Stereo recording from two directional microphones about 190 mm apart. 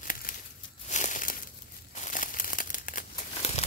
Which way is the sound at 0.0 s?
45° left (ahead or behind).